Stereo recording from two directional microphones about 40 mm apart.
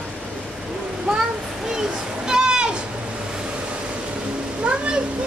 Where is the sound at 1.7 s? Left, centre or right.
Centre.